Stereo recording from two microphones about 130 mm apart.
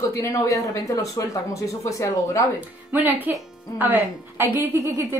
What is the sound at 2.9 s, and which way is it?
A woman's voice, 15° right (ahead or behind).